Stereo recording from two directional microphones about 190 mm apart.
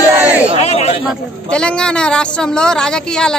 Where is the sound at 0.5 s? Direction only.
35° left (ahead or behind).